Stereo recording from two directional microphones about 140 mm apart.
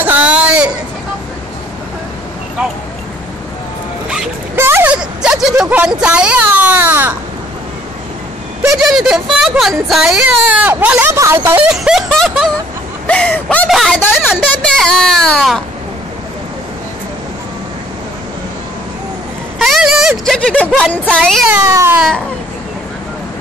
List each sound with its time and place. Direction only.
0.0 s a sound: 10° right (ahead or behind)
4.6 s a sound: 15° right (ahead or behind)
8.7 s speech: centre (ahead or behind)
11.7 s speech: 5° right (ahead or behind)
13.7 s speech: centre (ahead or behind)
19.6 s speech: centre (ahead or behind)
20.3 s speech: 10° left (ahead or behind)
21.5 s speech: 20° right (ahead or behind)